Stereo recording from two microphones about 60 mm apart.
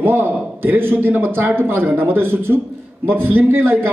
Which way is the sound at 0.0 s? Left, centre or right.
Right.